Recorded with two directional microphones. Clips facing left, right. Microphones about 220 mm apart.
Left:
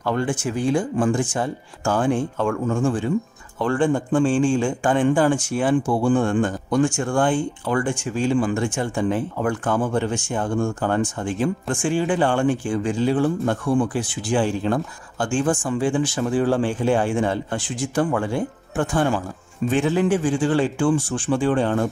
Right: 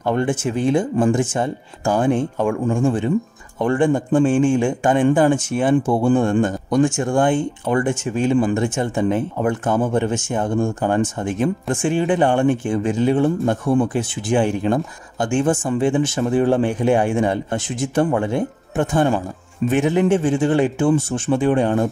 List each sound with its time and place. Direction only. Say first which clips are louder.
0.0 s a man's voice: right 3 dB; 20° right (ahead or behind)